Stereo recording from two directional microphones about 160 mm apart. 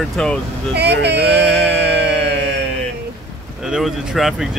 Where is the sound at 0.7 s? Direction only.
90° right.